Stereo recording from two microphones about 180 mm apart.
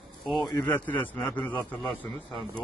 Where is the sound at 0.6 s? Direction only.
10° left (ahead or behind).